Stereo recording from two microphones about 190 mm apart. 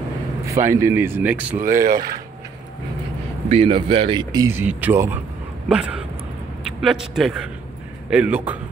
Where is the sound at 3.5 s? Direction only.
30° right (ahead or behind).